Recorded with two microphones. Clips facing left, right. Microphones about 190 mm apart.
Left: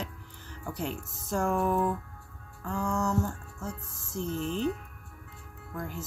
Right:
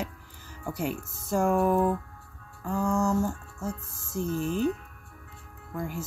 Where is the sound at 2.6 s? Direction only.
10° right (ahead or behind).